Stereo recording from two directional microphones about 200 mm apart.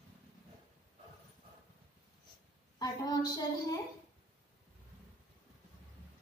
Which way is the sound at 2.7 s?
20° left (ahead or behind).